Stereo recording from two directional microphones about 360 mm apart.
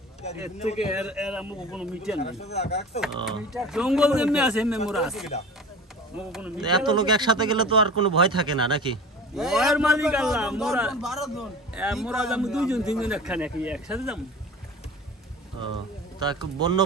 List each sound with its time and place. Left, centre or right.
0.7 s a man's voice: centre
2.1 s speech: centre
3.3 s a man's voice: centre
9.3 s a man's voice: centre
16.2 s speech: centre